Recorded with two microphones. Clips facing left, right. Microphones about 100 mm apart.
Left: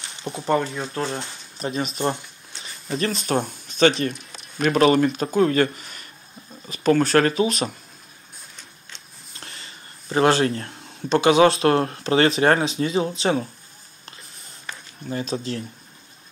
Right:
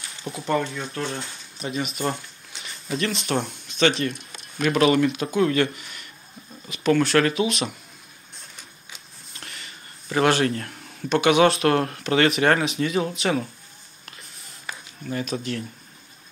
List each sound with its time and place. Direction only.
0.3 s speech: 25° left (ahead or behind)
9.4 s a sound: 30° left (ahead or behind)
10.1 s speech: 30° left (ahead or behind)
15.0 s speech: 30° left (ahead or behind)